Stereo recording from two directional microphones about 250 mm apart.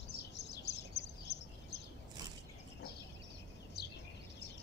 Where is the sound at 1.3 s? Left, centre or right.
Left.